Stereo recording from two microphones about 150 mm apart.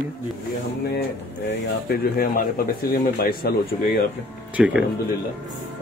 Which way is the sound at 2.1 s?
80° left.